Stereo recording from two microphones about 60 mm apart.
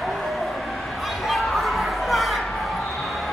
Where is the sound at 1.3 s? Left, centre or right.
Centre.